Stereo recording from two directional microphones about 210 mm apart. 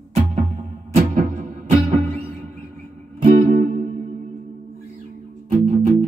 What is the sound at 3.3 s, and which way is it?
Music, 40° right (ahead or behind).